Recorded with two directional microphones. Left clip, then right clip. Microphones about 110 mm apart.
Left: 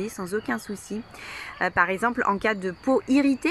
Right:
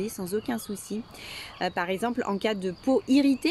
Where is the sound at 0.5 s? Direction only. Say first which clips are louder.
Left 3 dB; 45° right (ahead or behind).